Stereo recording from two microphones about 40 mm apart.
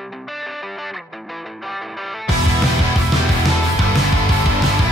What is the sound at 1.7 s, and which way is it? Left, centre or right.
Music, centre.